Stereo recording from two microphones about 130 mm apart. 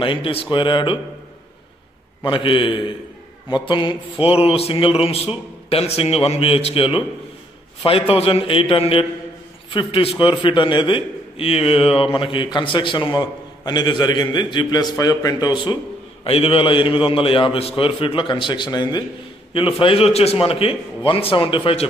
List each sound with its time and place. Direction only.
0.0 s a man's voice: 40° left (ahead or behind)
2.2 s a man's voice: 40° left (ahead or behind)
16.3 s a man's voice: 45° left (ahead or behind)
19.5 s a man's voice: 45° left (ahead or behind)